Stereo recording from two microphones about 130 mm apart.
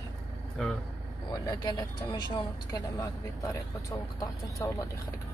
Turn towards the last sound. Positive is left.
turn(degrees=25)  # may be behind; listen again after turning